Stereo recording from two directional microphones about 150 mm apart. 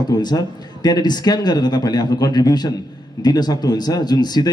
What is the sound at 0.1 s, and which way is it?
A man's voice, 25° left (ahead or behind).